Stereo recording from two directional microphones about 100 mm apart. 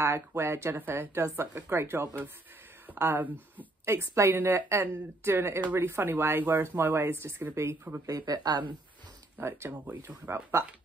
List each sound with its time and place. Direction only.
0.0 s a woman's voice: 25° right (ahead or behind)
8.1 s speech: 40° right (ahead or behind)
9.4 s a woman's voice: 25° right (ahead or behind)